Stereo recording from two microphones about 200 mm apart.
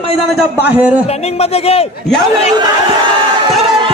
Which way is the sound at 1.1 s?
30° left (ahead or behind).